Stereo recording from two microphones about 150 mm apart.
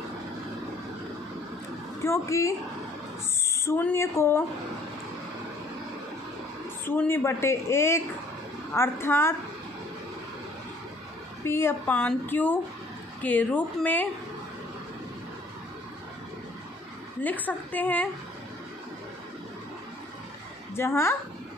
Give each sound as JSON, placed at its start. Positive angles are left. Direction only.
{"t": 2.0, "sound": "a woman's voice", "side_deg": 20}
{"t": 6.9, "sound": "a woman's voice", "side_deg": 15}
{"t": 11.4, "sound": "a woman's voice", "side_deg": 15}
{"t": 17.2, "sound": "a woman's voice", "side_deg": 10}
{"t": 20.7, "sound": "a woman's voice", "side_deg": 15}